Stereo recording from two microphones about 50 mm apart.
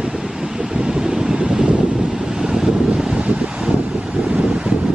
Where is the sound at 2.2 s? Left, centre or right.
Centre.